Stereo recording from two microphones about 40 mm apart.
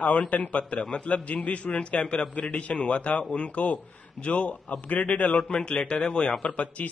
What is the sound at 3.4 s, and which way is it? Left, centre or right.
A man's voice, left.